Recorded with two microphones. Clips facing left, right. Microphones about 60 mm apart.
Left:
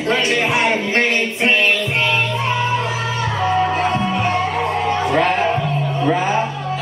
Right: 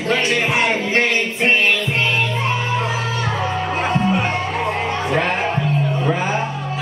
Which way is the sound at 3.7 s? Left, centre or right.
Right.